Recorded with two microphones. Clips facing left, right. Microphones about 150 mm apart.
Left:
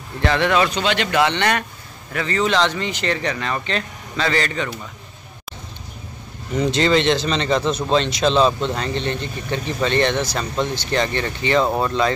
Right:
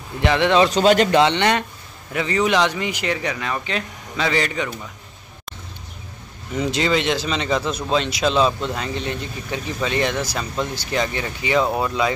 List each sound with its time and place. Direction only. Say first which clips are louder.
0.2 s speech: right 1 dB; 15° right (ahead or behind)
0.6 s a man's voice: right 5 dB; 40° right (ahead or behind)
1.1 s a man's voice: right 2 dB; 20° right (ahead or behind)
6.5 s speech: left 3 dB; 5° right (ahead or behind)